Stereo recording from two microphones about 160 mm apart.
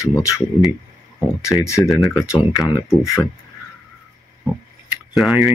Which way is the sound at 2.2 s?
20° left (ahead or behind).